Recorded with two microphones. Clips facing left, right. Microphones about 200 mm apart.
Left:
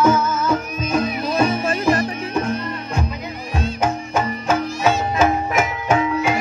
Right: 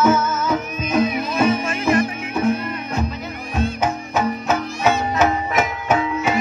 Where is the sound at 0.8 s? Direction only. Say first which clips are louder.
Right 2 dB; 40° left (ahead or behind).